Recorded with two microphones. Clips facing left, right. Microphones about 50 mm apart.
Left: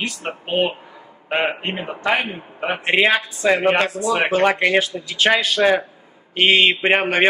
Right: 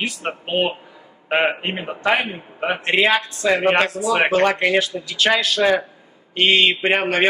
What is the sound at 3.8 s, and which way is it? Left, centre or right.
Speech, centre.